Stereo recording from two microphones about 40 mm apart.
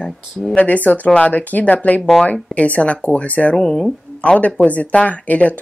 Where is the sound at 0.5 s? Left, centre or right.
Left.